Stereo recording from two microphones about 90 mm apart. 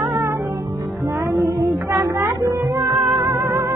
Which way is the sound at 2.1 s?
40° right (ahead or behind).